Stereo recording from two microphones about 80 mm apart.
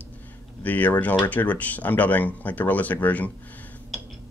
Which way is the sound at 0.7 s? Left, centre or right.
Left.